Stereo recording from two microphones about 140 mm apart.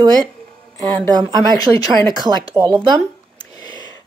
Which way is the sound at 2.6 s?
35° right (ahead or behind).